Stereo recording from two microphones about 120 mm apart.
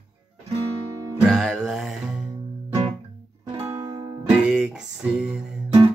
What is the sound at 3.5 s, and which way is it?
Music, 25° right (ahead or behind).